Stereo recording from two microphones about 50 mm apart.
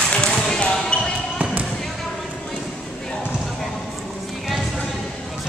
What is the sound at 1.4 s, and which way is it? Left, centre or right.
Basketball bounce, right.